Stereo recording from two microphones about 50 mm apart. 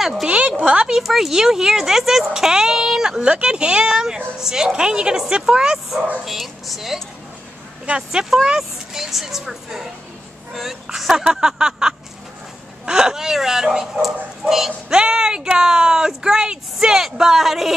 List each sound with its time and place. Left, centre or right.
0.0 s speech: centre
0.3 s speech: right
0.8 s speech: centre
6.2 s speech: centre
7.8 s speech: centre